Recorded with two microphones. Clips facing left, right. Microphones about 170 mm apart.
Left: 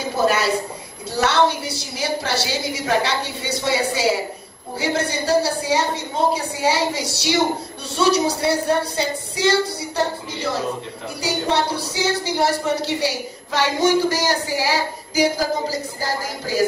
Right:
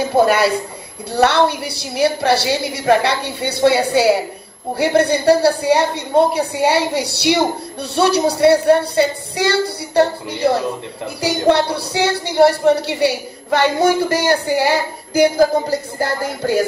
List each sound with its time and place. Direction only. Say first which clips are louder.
1.1 s a woman's voice: right 4 dB; 60° right (ahead or behind)